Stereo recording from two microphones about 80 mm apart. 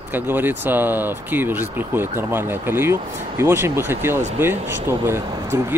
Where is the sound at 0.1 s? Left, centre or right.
Right.